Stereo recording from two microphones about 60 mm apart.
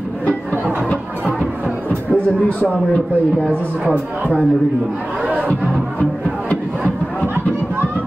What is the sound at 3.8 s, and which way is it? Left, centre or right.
Speech, centre.